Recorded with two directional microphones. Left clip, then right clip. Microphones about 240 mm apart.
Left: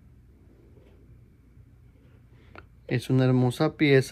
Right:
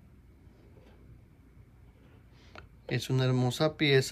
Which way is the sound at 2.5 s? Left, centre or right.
Centre.